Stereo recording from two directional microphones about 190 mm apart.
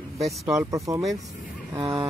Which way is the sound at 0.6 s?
15° right (ahead or behind).